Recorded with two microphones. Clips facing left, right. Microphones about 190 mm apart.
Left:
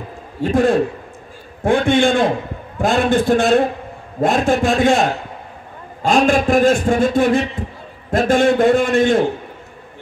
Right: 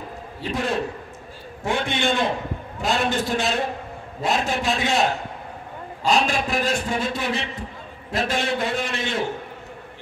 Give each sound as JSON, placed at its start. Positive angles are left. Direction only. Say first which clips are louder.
{"t": 0.4, "sound": "a man's voice", "louder": "left 10 dB", "side_deg": 50}